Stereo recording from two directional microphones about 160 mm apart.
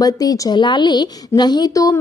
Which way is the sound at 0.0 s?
25° left (ahead or behind).